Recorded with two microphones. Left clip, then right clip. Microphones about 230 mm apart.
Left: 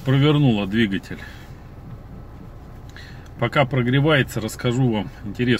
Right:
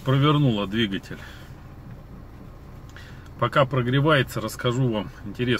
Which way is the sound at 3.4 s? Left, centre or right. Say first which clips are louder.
Left 1 dB; centre.